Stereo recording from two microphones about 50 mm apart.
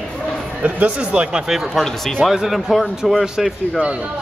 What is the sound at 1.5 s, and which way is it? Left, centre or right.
Speech, centre.